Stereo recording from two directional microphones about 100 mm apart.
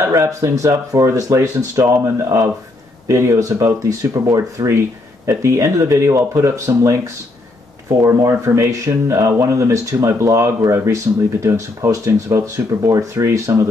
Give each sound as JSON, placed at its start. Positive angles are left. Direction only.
{"t": 0.0, "sound": "speech", "side_deg": -30}
{"t": 8.0, "sound": "speech", "side_deg": -30}